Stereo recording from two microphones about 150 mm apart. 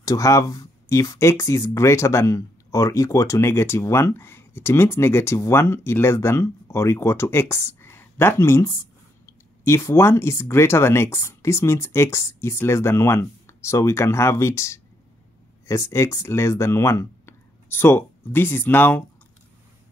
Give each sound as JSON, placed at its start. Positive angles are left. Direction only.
{"t": 0.0, "sound": "speech", "side_deg": 20}